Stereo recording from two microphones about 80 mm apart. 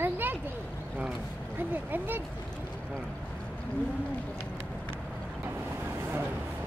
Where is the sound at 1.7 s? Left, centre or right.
Right.